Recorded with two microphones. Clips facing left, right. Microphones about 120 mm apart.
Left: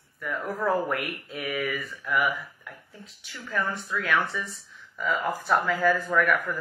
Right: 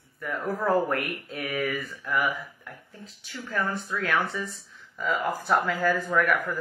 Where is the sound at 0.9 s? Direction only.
35° right (ahead or behind).